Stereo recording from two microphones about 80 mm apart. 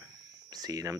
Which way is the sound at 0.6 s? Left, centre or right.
Right.